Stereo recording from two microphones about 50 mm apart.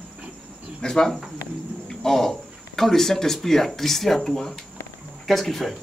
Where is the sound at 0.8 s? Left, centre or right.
Centre.